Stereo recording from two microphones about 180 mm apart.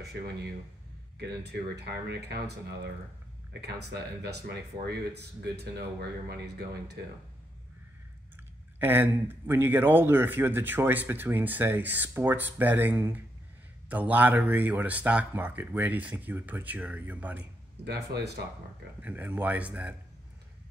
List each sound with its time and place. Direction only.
1.1 s speech: 65° right (ahead or behind)
4.2 s speech: 65° right (ahead or behind)
8.7 s speech: 10° right (ahead or behind)
18.1 s speech: 65° right (ahead or behind)
18.9 s speech: 10° right (ahead or behind)